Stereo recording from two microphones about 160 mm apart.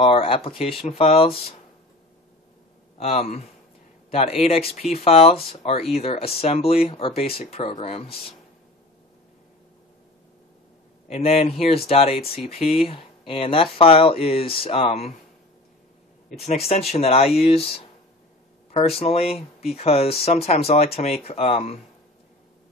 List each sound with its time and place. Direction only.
0.0 s speech: 35° left (ahead or behind)
3.0 s speech: 40° left (ahead or behind)
11.1 s speech: 40° left (ahead or behind)
16.4 s speech: 40° left (ahead or behind)